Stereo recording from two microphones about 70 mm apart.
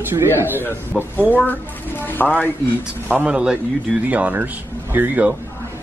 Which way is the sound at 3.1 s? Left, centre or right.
Centre.